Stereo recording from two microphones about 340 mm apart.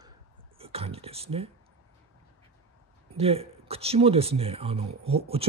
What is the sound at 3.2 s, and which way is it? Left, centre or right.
Speech, centre.